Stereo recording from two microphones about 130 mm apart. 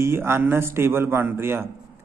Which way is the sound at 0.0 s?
20° right (ahead or behind).